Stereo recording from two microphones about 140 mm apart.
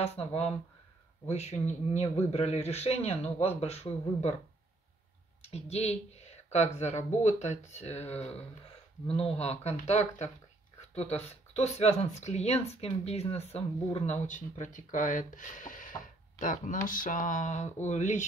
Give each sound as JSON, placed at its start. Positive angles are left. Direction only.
{"t": 0.0, "sound": "a man's voice", "side_deg": 45}
{"t": 5.4, "sound": "a man's voice", "side_deg": 50}